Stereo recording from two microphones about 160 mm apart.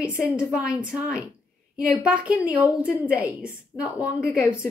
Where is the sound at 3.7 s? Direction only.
5° left (ahead or behind).